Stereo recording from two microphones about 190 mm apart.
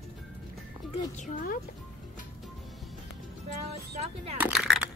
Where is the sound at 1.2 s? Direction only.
45° left (ahead or behind).